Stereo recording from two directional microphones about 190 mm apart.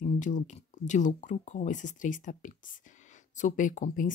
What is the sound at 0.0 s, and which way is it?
Speech, 40° left (ahead or behind).